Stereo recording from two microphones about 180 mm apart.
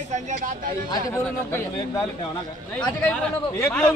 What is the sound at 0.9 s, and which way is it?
A man's voice, 20° left (ahead or behind).